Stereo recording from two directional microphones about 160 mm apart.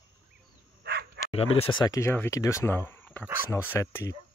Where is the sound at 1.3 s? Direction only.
40° left (ahead or behind).